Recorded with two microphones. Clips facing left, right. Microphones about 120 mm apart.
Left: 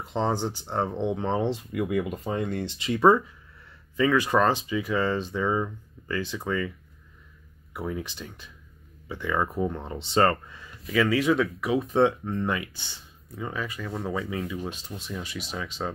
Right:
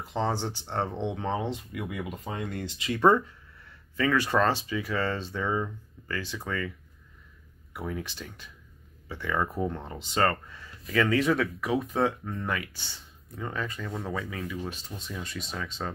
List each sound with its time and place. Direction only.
0.0 s speech: 20° left (ahead or behind)
1.7 s speech: 45° left (ahead or behind)
2.2 s speech: 30° left (ahead or behind)
3.0 s speech: 5° left (ahead or behind)
3.9 s speech: 20° left (ahead or behind)
7.7 s speech: 20° left (ahead or behind)
10.5 s speech: 15° left (ahead or behind)
11.8 s speech: 25° left (ahead or behind)
13.4 s speech: 5° left (ahead or behind)
14.3 s speech: 20° left (ahead or behind)
14.9 s speech: 5° left (ahead or behind)